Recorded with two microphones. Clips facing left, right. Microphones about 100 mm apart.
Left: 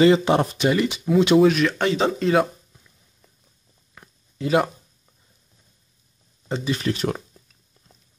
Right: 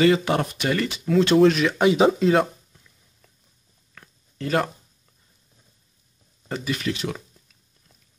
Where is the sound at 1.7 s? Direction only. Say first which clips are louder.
Right 4 dB; 10° right (ahead or behind).